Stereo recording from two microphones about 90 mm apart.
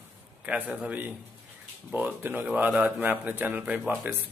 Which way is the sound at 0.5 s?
15° right (ahead or behind).